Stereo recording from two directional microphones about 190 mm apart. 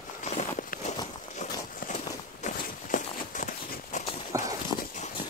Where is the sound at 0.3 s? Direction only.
40° left (ahead or behind).